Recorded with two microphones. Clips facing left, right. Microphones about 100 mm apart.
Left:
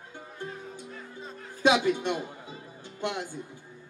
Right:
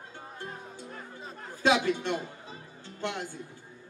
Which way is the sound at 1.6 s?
15° left (ahead or behind).